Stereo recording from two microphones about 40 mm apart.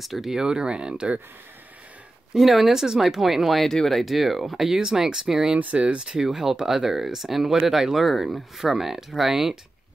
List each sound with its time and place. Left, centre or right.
0.0 s speech: centre; by 1.2 s right
2.3 s speech: centre
3.6 s speech: centre
4.0 s speech: centre
5.8 s speech: right
6.2 s speech: centre